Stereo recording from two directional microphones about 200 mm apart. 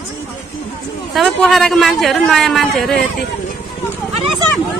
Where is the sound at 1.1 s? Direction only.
Centre (ahead or behind).